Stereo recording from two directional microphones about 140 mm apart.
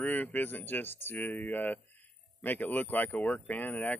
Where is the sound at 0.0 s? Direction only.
10° left (ahead or behind).